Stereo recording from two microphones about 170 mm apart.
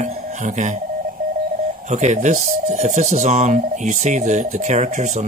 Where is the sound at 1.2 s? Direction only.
55° right (ahead or behind).